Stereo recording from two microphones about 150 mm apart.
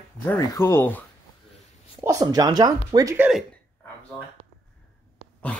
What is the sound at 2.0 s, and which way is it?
Speech, 25° right (ahead or behind).